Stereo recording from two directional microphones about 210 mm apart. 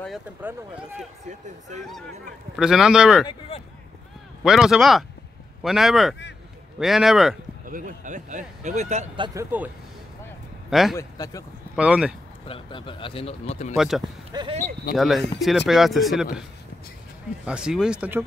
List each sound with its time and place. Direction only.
0.0 s speech: 5° right (ahead or behind)
2.5 s speech: centre (ahead or behind)
3.3 s a man's voice: 25° left (ahead or behind)
4.4 s speech: centre (ahead or behind)
7.6 s speech: 40° right (ahead or behind); by 9.7 s 10° right (ahead or behind)
10.7 s speech: centre (ahead or behind)
11.0 s speech: 15° left (ahead or behind)
11.7 s speech: 5° right (ahead or behind)
12.4 s a man's voice: 25° left (ahead or behind)
13.7 s speech: centre (ahead or behind)
14.3 s speech: 20° right (ahead or behind)
15.0 s speech: centre (ahead or behind)
17.5 s speech: 5° right (ahead or behind)